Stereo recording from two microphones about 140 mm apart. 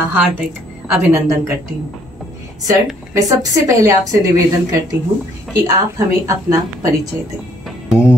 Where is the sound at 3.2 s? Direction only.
25° right (ahead or behind).